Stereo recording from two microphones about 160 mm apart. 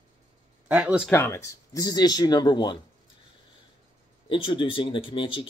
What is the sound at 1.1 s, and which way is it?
Speech, 15° left (ahead or behind).